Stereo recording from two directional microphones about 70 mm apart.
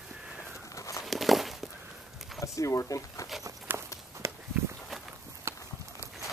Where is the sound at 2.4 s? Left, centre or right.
Left.